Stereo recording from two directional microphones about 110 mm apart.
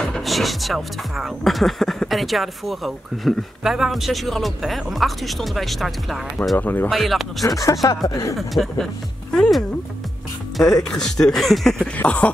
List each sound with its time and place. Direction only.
0.0 s speech: centre (ahead or behind)
6.6 s speech: 15° left (ahead or behind)
6.9 s speech: centre (ahead or behind)
7.4 s speech: 30° left (ahead or behind)
8.4 s speech: centre (ahead or behind)
10.8 s speech: 5° left (ahead or behind)
12.0 s speech: 15° left (ahead or behind)